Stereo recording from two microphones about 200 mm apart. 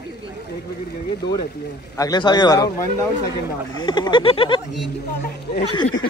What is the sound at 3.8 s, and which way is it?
Speech, 20° left (ahead or behind).